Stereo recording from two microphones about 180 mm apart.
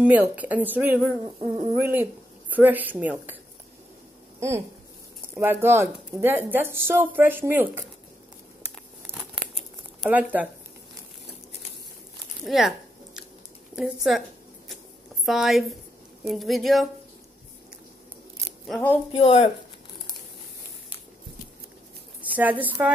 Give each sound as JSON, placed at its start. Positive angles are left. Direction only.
{"t": 0.0, "sound": "speech", "side_deg": -10}
{"t": 1.4, "sound": "speech", "side_deg": -30}
{"t": 1.8, "sound": "speech", "side_deg": -10}
{"t": 4.4, "sound": "speech", "side_deg": -15}
{"t": 9.1, "sound": "crumpling", "side_deg": -5}
{"t": 10.0, "sound": "speech", "side_deg": -10}
{"t": 12.4, "sound": "a sound", "side_deg": 0}
{"t": 13.7, "sound": "speech", "side_deg": 0}
{"t": 15.2, "sound": "speech", "side_deg": 0}
{"t": 18.7, "sound": "speech", "side_deg": 10}
{"t": 19.1, "sound": "speech", "side_deg": 40}
{"t": 22.3, "sound": "a woman's voice", "side_deg": -10}